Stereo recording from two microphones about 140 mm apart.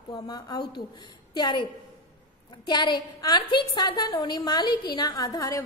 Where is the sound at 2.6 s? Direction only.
30° left (ahead or behind).